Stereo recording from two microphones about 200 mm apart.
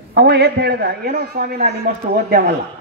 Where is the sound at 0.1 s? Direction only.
55° right (ahead or behind).